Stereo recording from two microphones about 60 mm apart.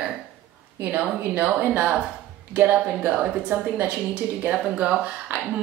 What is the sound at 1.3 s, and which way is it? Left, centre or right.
Speech, right.